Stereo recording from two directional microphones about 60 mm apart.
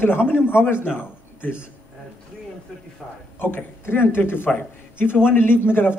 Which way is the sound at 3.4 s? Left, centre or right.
Left.